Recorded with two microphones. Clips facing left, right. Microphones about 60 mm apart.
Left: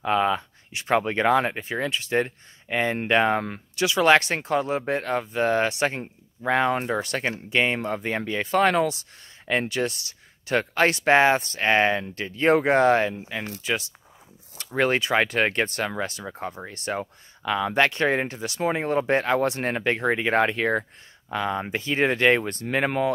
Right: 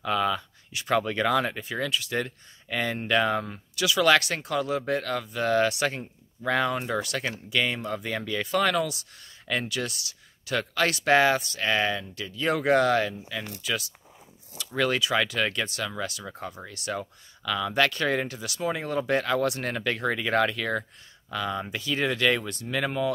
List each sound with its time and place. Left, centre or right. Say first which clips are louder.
0.0 s speech: left 4 dB; left
3.4 s speech: left 4 dB; left
3.8 s speech: left 3 dB; left